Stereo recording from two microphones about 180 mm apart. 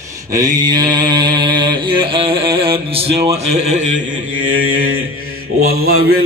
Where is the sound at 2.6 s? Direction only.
30° right (ahead or behind).